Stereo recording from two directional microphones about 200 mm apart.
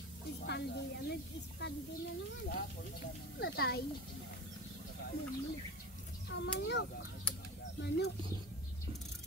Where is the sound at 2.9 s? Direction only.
50° left (ahead or behind).